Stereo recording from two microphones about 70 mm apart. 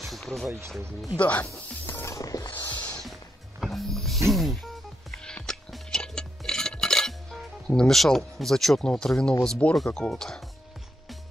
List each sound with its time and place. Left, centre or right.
0.0 s a sound: centre
0.5 s speech: right
1.1 s speech: left
1.4 s speech: left
2.0 s music: left
2.5 s music: left
3.6 s music: centre
5.2 s music: centre
9.8 s speech: centre